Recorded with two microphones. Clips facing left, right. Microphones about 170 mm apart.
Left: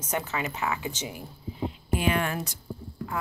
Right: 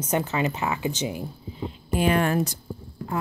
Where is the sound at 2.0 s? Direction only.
40° right (ahead or behind).